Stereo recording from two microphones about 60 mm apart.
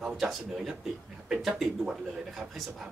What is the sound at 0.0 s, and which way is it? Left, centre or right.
A man's voice, centre.